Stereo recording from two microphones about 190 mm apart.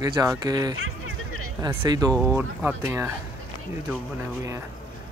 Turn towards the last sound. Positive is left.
turn(degrees=-15)  # may be behind; listen again after turning